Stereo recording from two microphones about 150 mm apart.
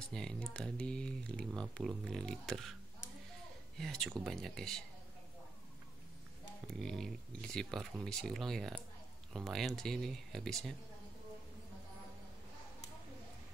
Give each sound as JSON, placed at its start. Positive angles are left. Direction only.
{"t": 0.1, "sound": "speech", "side_deg": 5}
{"t": 3.7, "sound": "speech", "side_deg": 5}
{"t": 6.7, "sound": "speech", "side_deg": 5}